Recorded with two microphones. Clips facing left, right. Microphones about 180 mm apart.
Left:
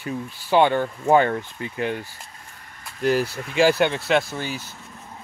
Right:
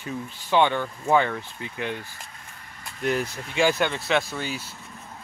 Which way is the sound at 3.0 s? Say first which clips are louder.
Left 5 dB; 35° left (ahead or behind).